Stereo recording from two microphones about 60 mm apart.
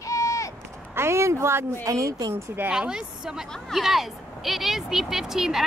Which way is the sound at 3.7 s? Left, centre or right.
Centre.